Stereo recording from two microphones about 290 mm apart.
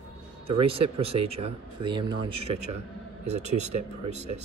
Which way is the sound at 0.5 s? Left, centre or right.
Centre.